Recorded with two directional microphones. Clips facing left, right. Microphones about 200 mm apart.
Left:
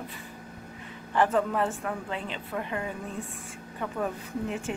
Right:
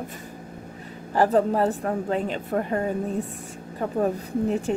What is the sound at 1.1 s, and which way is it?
A woman's voice, 35° right (ahead or behind).